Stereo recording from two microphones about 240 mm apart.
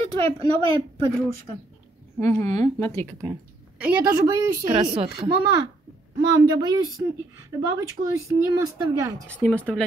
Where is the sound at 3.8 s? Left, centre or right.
Centre.